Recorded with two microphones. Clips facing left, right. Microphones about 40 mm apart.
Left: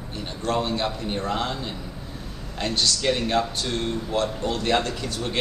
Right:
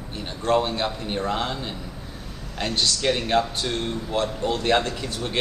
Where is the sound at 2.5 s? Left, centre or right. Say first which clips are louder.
Even; right.